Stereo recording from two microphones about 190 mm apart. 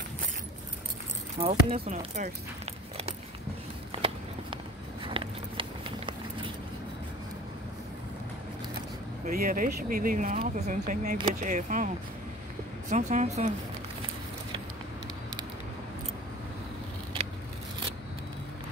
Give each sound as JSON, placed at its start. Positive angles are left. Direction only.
{"t": 1.4, "sound": "speech", "side_deg": -35}
{"t": 3.9, "sound": "a sound", "side_deg": -30}
{"t": 9.2, "sound": "speech", "side_deg": -50}
{"t": 12.9, "sound": "speech", "side_deg": -35}